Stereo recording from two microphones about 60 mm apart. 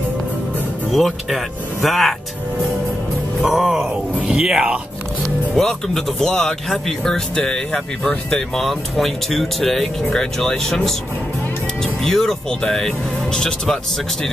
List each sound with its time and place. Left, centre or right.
0.9 s speech: centre
3.4 s speech: centre
5.6 s speech: centre
12.0 s speech: centre